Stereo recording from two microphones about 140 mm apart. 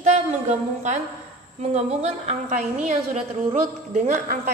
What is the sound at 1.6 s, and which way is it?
A woman's voice, 50° right (ahead or behind).